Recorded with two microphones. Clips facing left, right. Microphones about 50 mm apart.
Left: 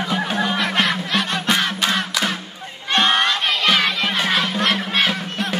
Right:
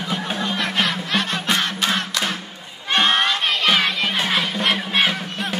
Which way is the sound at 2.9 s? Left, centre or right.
Centre.